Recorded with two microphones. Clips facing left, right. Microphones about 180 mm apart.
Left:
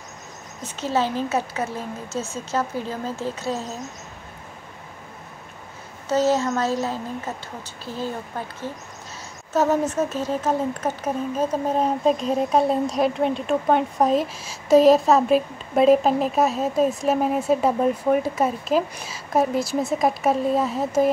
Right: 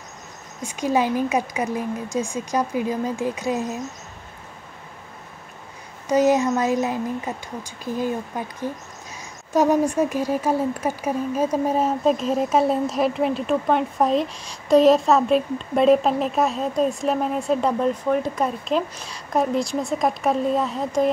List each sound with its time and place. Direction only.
0.6 s speech: 10° right (ahead or behind)
6.0 s speech: 15° right (ahead or behind); by 21.1 s 5° left (ahead or behind)